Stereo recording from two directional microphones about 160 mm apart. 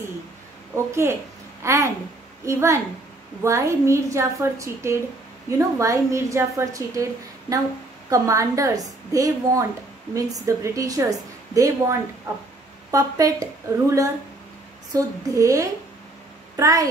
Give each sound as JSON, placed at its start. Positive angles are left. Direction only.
{"t": 0.7, "sound": "a child's voice", "side_deg": -15}
{"t": 12.9, "sound": "a woman's voice", "side_deg": -20}